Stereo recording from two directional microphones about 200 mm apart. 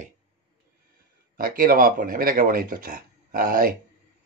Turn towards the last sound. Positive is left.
turn(degrees=-45)  # may be behind; listen again after turning